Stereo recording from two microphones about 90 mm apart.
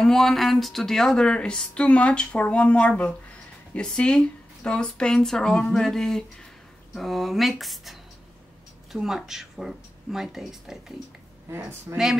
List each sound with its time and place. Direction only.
0.0 s speech: 5° left (ahead or behind)
11.9 s speech: 25° right (ahead or behind)